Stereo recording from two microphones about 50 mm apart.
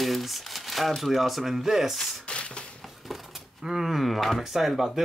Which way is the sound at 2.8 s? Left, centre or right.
Centre.